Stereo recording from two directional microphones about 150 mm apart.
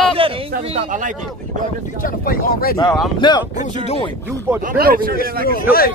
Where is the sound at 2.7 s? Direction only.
25° left (ahead or behind).